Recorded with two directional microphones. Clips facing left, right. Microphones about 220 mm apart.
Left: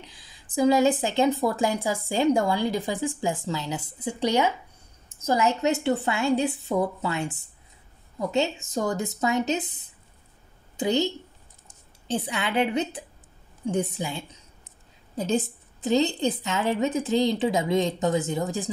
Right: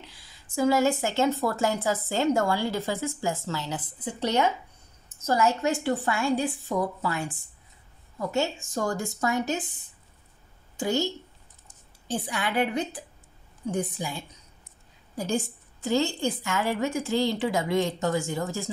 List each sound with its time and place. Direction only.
0.0 s a woman's voice: 15° left (ahead or behind)
10.8 s a woman's voice: 20° left (ahead or behind)
12.1 s a woman's voice: 25° left (ahead or behind)